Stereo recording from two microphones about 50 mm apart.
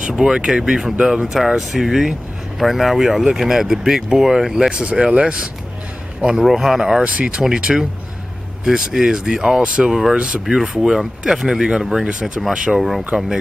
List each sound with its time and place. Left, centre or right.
0.0 s speech: centre
6.4 s speech: centre
7.1 s speech: right
10.5 s speech: centre
12.8 s speech: centre